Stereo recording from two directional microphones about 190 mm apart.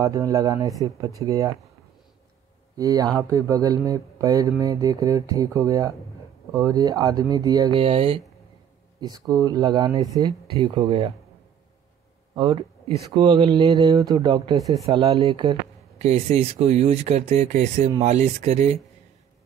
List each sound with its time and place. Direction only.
0.0 s speech: 15° right (ahead or behind)
2.8 s speech: 20° right (ahead or behind)
9.0 s speech: 20° right (ahead or behind)
12.4 s speech: 25° right (ahead or behind)